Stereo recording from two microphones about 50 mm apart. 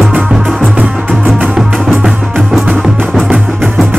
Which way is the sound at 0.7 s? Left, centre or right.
Right.